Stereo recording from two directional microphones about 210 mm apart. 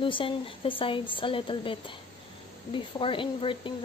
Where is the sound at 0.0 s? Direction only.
25° left (ahead or behind).